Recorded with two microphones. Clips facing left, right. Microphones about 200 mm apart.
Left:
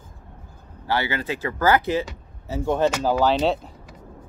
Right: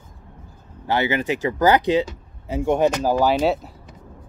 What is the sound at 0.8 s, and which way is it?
Speech, 20° right (ahead or behind).